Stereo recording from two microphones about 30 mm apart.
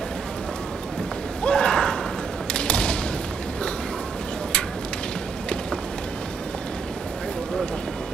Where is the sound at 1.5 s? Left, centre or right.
Left.